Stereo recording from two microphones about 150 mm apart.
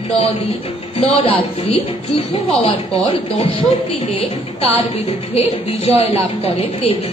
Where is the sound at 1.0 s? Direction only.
40° left (ahead or behind).